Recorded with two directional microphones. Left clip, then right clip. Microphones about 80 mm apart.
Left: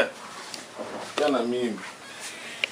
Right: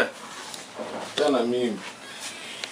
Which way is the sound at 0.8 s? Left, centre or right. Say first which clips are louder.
Right 2 dB; left.